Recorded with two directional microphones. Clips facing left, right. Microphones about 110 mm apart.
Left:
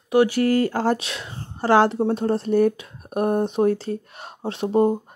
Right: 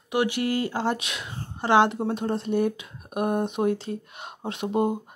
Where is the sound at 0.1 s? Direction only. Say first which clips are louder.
Left 7 dB; 35° left (ahead or behind).